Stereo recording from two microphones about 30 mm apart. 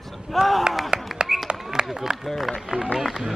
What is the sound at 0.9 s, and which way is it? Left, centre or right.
Clapping, right.